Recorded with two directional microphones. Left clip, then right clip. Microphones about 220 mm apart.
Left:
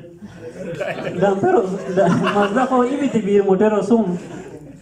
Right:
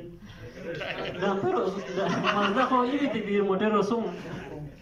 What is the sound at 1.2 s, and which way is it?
Speech, 35° left (ahead or behind).